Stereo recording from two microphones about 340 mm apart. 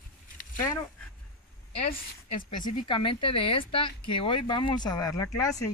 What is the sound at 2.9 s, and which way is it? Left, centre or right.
Speech, centre.